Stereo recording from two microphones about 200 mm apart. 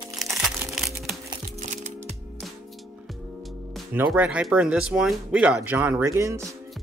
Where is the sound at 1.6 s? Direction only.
35° right (ahead or behind).